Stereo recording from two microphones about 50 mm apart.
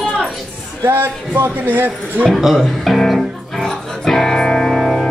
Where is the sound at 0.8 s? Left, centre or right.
Right.